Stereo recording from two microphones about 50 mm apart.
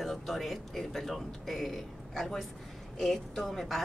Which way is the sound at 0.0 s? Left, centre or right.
Centre.